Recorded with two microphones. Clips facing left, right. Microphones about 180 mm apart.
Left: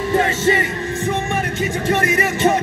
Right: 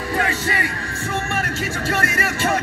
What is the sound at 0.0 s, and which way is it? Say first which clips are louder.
Music: left 6 dB; 25° left (ahead or behind).